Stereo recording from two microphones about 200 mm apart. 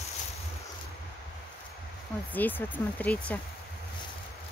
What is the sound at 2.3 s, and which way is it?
Speech, 10° left (ahead or behind).